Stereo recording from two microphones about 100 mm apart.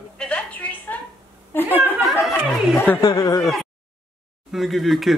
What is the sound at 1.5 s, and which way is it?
Chuckle, 20° left (ahead or behind).